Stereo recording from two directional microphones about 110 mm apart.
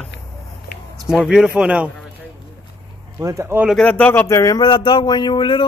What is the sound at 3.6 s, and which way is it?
Speech, 5° left (ahead or behind).